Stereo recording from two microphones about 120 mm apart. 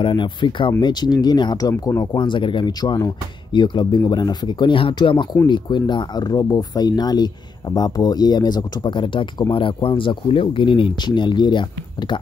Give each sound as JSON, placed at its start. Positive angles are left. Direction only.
{"t": 0.0, "sound": "speech", "side_deg": 40}